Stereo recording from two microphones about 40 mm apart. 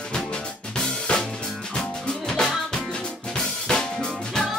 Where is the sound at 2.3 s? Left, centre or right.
Centre.